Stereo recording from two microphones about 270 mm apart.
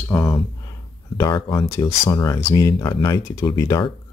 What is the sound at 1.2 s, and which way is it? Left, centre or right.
Speech, centre.